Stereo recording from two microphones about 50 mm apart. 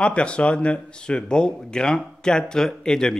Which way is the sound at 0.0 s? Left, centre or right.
Left.